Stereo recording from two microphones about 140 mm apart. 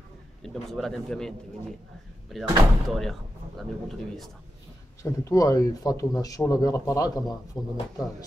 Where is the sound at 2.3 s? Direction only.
Centre (ahead or behind).